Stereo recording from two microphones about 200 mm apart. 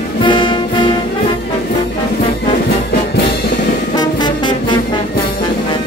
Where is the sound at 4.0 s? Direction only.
20° left (ahead or behind).